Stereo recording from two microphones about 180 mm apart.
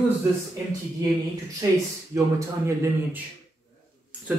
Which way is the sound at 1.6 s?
20° right (ahead or behind).